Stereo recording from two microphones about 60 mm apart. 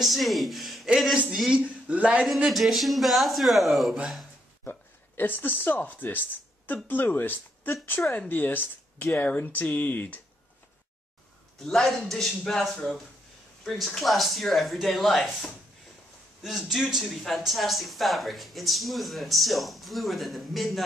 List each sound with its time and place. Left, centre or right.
0.0 s speech: centre
1.5 s speech: right
2.5 s speech: centre
4.6 s speech: left
11.6 s a man's voice: centre